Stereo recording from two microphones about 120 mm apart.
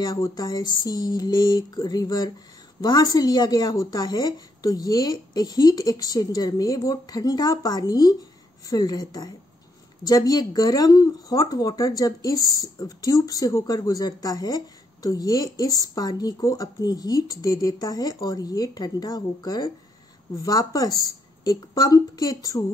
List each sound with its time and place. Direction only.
0.0 s speech: 35° left (ahead or behind)